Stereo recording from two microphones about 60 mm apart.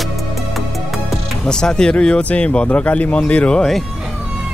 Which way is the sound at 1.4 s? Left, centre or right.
Centre.